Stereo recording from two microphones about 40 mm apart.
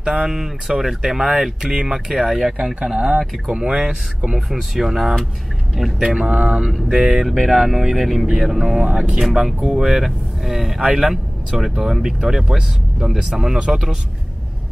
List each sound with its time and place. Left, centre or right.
0.0 s speech: centre
2.6 s speech: centre
4.5 s speech: centre
6.2 s speech: right
6.9 s speech: centre
8.3 s speech: centre